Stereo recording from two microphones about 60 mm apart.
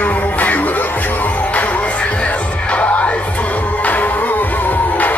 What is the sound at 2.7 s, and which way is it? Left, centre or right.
Music, left.